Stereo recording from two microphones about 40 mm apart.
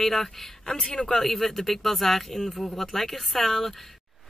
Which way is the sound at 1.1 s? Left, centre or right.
Centre.